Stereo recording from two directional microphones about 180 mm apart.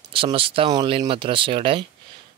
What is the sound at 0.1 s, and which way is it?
Speech, 30° right (ahead or behind).